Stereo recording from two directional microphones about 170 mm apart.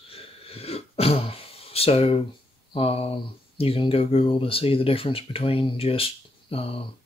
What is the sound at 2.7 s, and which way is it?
Speech, 35° left (ahead or behind).